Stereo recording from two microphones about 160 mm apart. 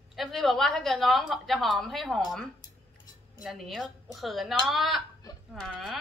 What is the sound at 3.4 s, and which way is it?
A woman's voice, centre (ahead or behind).